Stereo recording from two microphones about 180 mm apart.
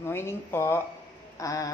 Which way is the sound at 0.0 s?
15° left (ahead or behind).